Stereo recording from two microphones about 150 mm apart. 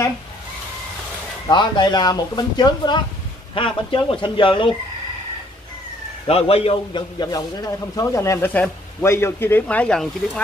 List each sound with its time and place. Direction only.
1.5 s a man's voice: 30° left (ahead or behind)
6.2 s a man's voice: 40° left (ahead or behind); by 10.4 s 5° left (ahead or behind)